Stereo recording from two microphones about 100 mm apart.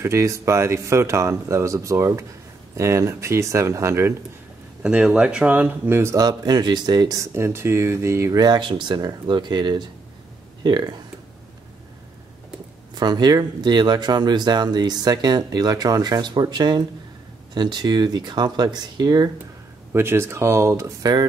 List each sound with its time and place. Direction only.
0.0 s speech: 30° right (ahead or behind)
4.8 s speech: 10° right (ahead or behind)
6.1 s speech: 40° right (ahead or behind)
12.9 s speech: 45° right (ahead or behind)
19.9 s speech: 25° right (ahead or behind)